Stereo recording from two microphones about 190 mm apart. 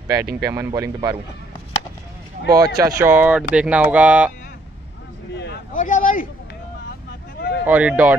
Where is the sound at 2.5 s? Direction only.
20° right (ahead or behind).